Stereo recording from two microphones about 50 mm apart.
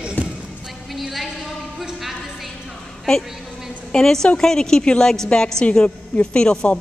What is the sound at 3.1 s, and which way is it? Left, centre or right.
A woman's voice, centre.